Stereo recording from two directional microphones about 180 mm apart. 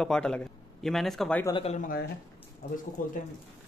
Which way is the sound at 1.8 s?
50° left (ahead or behind).